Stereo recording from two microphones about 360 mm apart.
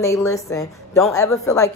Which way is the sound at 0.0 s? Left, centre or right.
Centre.